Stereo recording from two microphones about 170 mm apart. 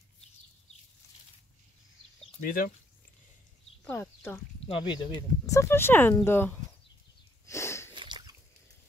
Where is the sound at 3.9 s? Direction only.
10° left (ahead or behind).